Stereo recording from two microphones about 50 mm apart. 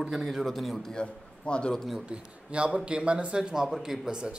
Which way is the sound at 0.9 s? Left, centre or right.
Centre.